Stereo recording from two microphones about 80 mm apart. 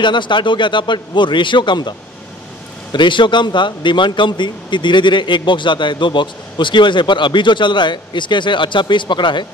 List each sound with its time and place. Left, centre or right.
0.0 s a man's voice: left
2.9 s speech: left